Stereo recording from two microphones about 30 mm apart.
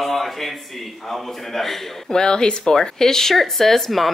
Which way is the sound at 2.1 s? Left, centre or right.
Left.